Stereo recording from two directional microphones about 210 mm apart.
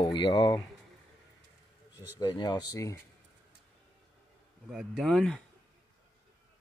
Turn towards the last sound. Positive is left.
turn(degrees=0)  # may be behind; listen again after turning